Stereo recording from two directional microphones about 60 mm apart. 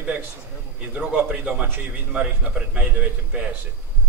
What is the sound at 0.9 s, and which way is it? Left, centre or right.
A man's voice, centre.